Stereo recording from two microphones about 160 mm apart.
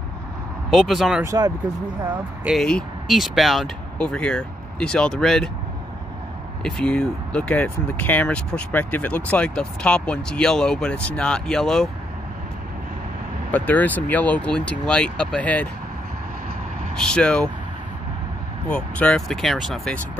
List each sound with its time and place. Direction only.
0.7 s speech: centre (ahead or behind)
1.2 s speech: 20° right (ahead or behind)
2.4 s speech: centre (ahead or behind)
6.6 s speech: 5° left (ahead or behind)
13.5 s speech: 10° left (ahead or behind)
16.9 s speech: 5° left (ahead or behind)
18.7 s speech: 5° left (ahead or behind)